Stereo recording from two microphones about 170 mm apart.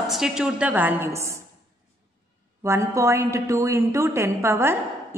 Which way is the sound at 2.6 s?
15° right (ahead or behind).